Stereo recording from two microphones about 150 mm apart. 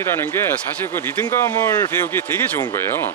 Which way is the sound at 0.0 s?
15° left (ahead or behind).